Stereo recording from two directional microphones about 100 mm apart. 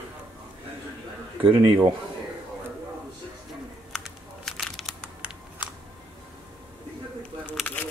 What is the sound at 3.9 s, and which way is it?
Crumpling, centre (ahead or behind).